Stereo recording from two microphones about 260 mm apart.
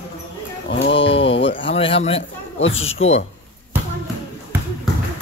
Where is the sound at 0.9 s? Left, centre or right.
Left.